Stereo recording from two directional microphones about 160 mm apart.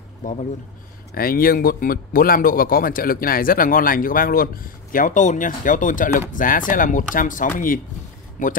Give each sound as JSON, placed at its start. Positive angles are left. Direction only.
{"t": 0.2, "sound": "speech", "side_deg": 50}
{"t": 1.1, "sound": "speech", "side_deg": 65}